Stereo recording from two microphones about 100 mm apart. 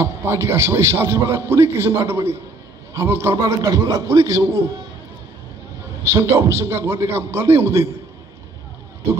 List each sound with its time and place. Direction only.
0.0 s a man's voice: 30° right (ahead or behind)
6.0 s a man's voice: 25° right (ahead or behind)